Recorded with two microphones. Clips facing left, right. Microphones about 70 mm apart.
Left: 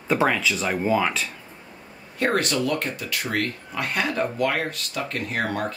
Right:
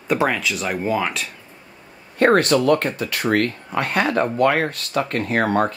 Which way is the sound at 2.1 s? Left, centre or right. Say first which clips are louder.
Right 8 dB; right.